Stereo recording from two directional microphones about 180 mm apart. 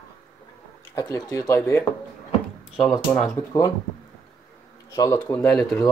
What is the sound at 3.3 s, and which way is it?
Speech, 20° left (ahead or behind).